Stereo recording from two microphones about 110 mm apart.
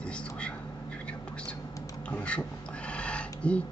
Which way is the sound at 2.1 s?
10° left (ahead or behind).